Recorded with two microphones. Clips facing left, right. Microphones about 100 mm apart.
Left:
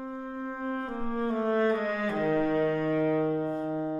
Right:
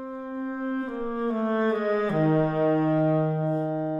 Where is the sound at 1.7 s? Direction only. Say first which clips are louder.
Right 4 dB; 35° right (ahead or behind).